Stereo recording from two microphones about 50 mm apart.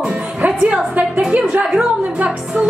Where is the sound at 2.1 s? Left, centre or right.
Right.